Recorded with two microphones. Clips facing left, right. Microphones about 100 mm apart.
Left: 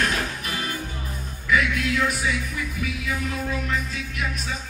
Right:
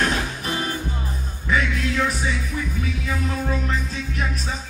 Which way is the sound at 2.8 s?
35° right (ahead or behind).